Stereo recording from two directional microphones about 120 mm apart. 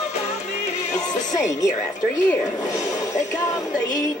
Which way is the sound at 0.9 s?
35° left (ahead or behind).